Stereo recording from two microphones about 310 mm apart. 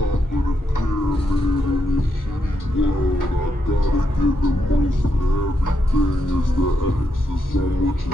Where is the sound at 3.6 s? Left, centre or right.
Left.